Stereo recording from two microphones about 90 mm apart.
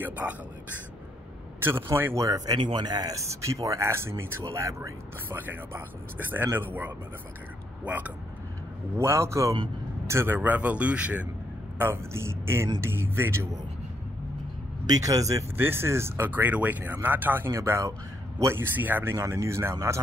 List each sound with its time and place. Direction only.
0.0 s speech: 15° right (ahead or behind)
1.6 s speech: 25° right (ahead or behind)
2.1 s speech: 40° right (ahead or behind)
5.3 s speech: 25° right (ahead or behind)
8.9 s speech: 30° right (ahead or behind); by 11.2 s 15° right (ahead or behind)
11.8 s speech: 30° right (ahead or behind)
14.9 s speech: 40° right (ahead or behind)
15.5 s speech: 25° right (ahead or behind)
19.1 s speech: 35° right (ahead or behind)